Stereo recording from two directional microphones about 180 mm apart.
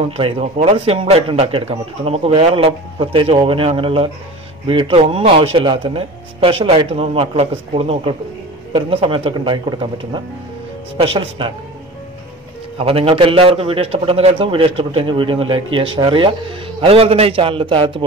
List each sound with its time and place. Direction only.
0.2 s a man's voice: 35° right (ahead or behind)
12.7 s a man's voice: 30° right (ahead or behind)